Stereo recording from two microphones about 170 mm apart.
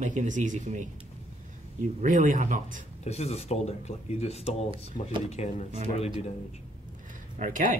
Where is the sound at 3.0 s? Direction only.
40° left (ahead or behind).